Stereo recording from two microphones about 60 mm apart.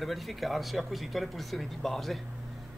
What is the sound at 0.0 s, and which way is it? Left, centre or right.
Speech, centre.